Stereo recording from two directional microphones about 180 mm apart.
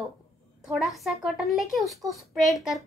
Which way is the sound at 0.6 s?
Centre (ahead or behind).